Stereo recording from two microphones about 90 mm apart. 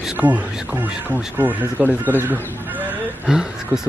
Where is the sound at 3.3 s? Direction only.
10° right (ahead or behind).